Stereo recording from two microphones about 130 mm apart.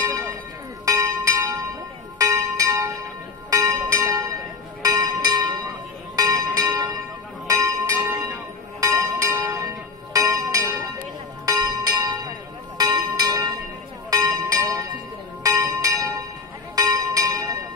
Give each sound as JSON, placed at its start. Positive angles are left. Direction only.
{"t": 0.0, "sound": "bell", "side_deg": -25}
{"t": 0.8, "sound": "music", "side_deg": -25}
{"t": 2.1, "sound": "church bell", "side_deg": -25}
{"t": 3.6, "sound": "music", "side_deg": -25}
{"t": 11.4, "sound": "bell", "side_deg": -30}
{"t": 14.1, "sound": "a sound", "side_deg": -25}
{"t": 15.4, "sound": "church bell", "side_deg": -25}
{"t": 16.7, "sound": "bell", "side_deg": -30}